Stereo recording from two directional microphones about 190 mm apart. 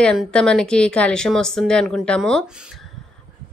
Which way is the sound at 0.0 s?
5° left (ahead or behind).